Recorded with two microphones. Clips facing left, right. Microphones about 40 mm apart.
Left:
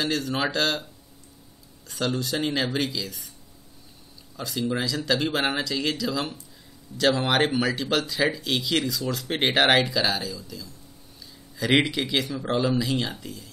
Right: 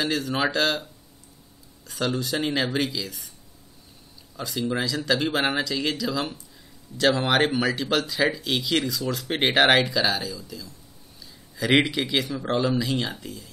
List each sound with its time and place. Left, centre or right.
0.0 s speech: centre
1.9 s speech: centre
4.4 s speech: centre